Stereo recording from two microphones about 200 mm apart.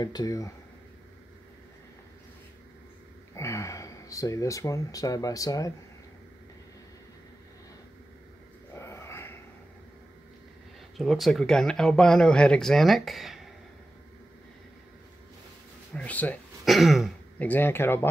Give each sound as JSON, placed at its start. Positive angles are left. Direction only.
{"t": 0.0, "sound": "speech", "side_deg": 20}
{"t": 3.3, "sound": "speech", "side_deg": 15}
{"t": 8.7, "sound": "a sound", "side_deg": 15}
{"t": 11.0, "sound": "speech", "side_deg": 0}
{"t": 15.9, "sound": "speech", "side_deg": 5}